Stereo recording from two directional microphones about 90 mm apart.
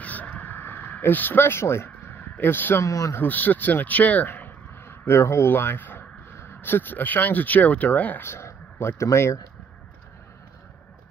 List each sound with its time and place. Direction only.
0.0 s a sound: 15° left (ahead or behind)
2.9 s speech: 35° left (ahead or behind)
3.2 s speech: 20° left (ahead or behind)